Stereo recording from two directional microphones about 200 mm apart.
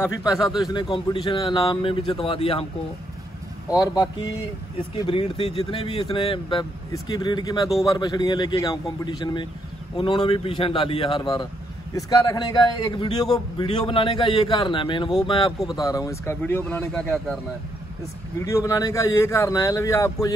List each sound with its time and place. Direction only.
0.0 s a man's voice: 15° left (ahead or behind)
3.7 s a man's voice: 20° left (ahead or behind)
18.4 s speech: 15° left (ahead or behind)